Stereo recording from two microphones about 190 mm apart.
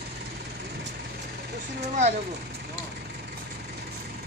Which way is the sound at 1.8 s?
35° right (ahead or behind).